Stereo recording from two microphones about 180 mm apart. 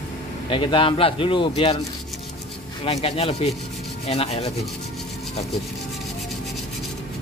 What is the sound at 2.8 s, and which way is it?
Speech, 35° left (ahead or behind).